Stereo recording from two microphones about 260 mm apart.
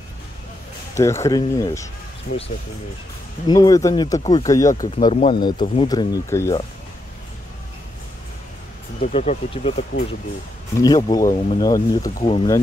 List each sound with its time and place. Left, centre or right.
0.9 s speech: centre
3.4 s speech: centre
9.0 s speech: left
10.8 s speech: centre